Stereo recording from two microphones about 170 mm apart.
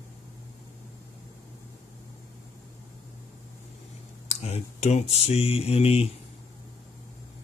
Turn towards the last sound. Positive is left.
turn(degrees=35)  # may be behind; listen again after turning